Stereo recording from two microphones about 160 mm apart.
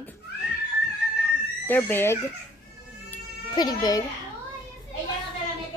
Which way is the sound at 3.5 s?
25° left (ahead or behind).